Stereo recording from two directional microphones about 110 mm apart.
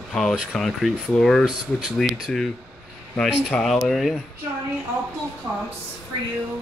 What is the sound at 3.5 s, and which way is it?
Speech, 5° left (ahead or behind).